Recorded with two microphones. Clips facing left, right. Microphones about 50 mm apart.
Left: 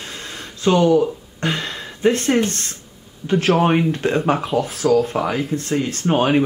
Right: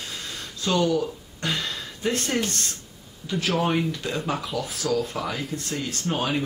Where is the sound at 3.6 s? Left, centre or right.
Left.